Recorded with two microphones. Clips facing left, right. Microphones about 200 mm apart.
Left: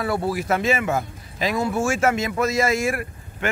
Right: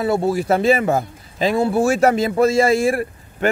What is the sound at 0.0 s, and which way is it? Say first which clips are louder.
Speech: right 5 dB; 25° right (ahead or behind).